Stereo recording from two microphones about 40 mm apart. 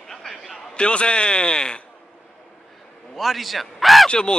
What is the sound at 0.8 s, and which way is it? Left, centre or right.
Speech, left.